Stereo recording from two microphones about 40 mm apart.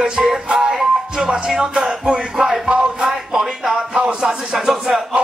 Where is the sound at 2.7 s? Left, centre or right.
Right.